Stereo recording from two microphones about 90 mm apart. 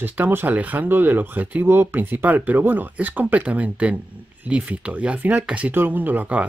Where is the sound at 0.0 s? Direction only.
20° right (ahead or behind).